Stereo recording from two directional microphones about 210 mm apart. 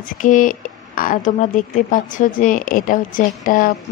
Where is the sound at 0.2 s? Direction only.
40° left (ahead or behind).